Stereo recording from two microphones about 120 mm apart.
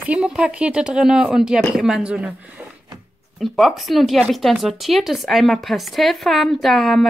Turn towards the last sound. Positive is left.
turn(degrees=5)  # may be behind; listen again after turning